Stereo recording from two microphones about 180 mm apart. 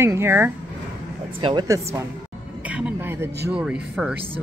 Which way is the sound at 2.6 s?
5° right (ahead or behind).